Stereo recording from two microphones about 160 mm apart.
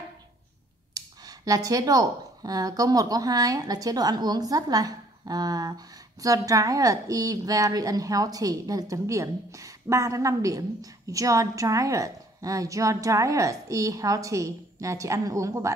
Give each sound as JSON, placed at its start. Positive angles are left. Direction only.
{"t": 0.9, "sound": "a woman's voice", "side_deg": -25}